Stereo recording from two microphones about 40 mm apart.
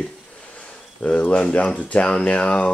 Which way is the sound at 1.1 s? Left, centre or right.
Left.